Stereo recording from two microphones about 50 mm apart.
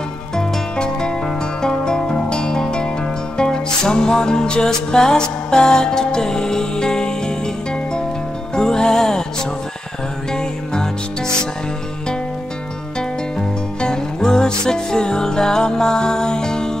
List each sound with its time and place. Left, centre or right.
0.4 s music: centre
8.5 s music: centre
10.3 s music: centre
13.7 s music: centre